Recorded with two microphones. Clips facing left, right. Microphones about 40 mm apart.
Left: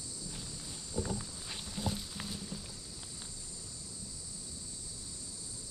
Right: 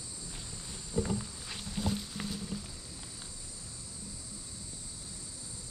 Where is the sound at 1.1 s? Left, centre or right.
Centre.